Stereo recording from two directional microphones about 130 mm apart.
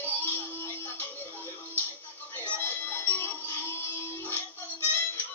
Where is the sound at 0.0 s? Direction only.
15° left (ahead or behind).